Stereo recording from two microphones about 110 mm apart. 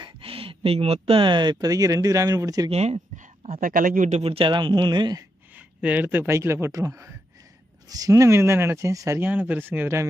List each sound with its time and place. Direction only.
0.0 s speech: 55° right (ahead or behind); by 2.7 s 35° right (ahead or behind)
2.7 s speech: 75° right (ahead or behind)
4.1 s speech: 60° right (ahead or behind); by 5.2 s 40° right (ahead or behind)
5.8 s speech: 15° right (ahead or behind); by 9.2 s 30° right (ahead or behind)
9.2 s speech: 15° right (ahead or behind)